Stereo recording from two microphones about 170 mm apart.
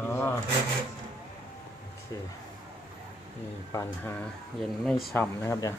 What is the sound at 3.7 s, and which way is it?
Speech, 10° left (ahead or behind).